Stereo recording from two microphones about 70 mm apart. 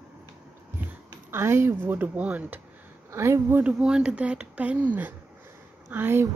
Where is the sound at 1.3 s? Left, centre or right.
Right.